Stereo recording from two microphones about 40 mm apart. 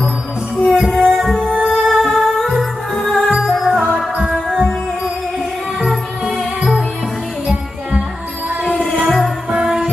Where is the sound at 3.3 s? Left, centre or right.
Centre.